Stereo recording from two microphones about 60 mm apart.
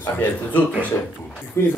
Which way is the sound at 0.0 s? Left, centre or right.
Left.